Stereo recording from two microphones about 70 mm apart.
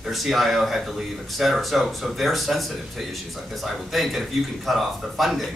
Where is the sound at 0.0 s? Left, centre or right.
Centre.